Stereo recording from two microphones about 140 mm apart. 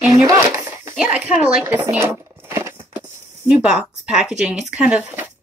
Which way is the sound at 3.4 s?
10° right (ahead or behind).